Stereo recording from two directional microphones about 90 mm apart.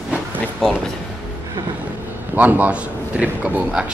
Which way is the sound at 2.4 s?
15° right (ahead or behind).